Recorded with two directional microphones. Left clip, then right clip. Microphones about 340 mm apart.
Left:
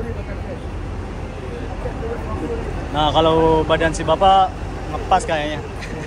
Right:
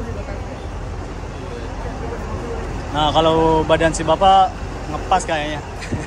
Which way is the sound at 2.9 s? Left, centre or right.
Centre.